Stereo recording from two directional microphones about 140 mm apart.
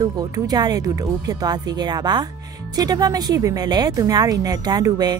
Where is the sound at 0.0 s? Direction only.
25° right (ahead or behind).